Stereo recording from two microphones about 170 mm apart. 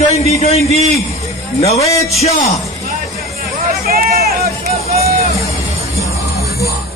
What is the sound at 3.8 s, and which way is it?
Hubbub, 60° right (ahead or behind).